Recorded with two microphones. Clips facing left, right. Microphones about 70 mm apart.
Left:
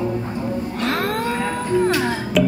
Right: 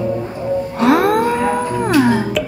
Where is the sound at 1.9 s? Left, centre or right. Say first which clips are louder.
Right 9 dB; centre.